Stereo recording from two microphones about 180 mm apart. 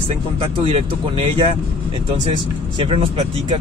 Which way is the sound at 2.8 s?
30° right (ahead or behind).